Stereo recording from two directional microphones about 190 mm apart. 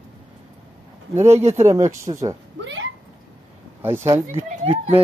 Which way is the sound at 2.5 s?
80° right.